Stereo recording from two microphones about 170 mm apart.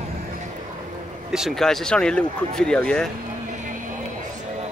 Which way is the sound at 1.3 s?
Centre (ahead or behind).